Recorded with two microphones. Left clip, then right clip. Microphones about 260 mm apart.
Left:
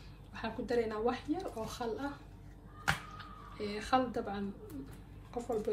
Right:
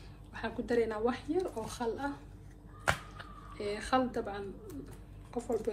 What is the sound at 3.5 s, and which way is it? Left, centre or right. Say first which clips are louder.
Speech: right 1 dB; right.